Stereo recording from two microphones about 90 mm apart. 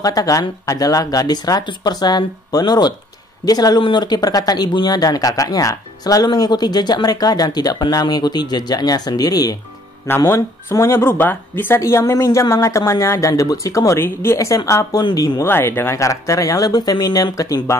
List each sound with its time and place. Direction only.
0.0 s speech: 45° left (ahead or behind)
10.3 s speech: 30° left (ahead or behind)
13.9 s a woman's voice: 25° left (ahead or behind); by 15.4 s 40° left (ahead or behind)
15.4 s speech: 25° left (ahead or behind)